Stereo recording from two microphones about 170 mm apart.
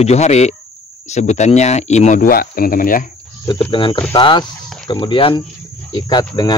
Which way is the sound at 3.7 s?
30° left (ahead or behind).